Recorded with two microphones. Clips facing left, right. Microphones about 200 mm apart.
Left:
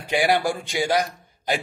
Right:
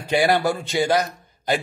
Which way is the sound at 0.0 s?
15° left (ahead or behind).